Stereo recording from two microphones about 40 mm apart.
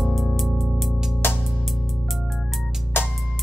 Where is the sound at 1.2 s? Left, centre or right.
Left.